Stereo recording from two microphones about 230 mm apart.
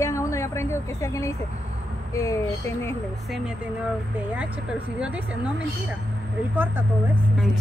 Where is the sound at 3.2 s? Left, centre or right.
Centre.